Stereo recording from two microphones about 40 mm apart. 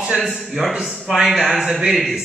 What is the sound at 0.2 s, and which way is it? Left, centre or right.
A man's voice, centre.